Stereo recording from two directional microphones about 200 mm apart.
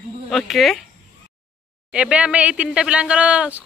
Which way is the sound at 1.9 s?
5° right (ahead or behind).